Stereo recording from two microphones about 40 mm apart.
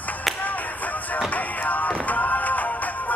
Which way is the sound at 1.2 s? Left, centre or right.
Left.